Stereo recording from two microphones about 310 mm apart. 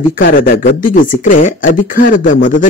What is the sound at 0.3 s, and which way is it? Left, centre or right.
A man's voice, left.